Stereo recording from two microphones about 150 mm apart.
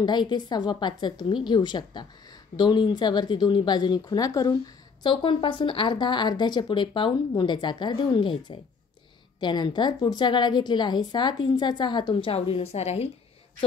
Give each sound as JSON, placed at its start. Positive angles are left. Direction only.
{"t": 0.0, "sound": "a woman's voice", "side_deg": 30}